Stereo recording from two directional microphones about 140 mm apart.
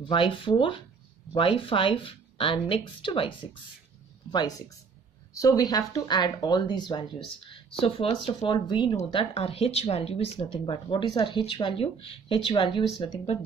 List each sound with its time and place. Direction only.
0.0 s speech: 35° left (ahead or behind)
4.3 s speech: 30° left (ahead or behind)